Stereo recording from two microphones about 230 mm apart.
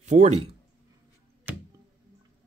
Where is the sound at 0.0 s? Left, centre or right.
Right.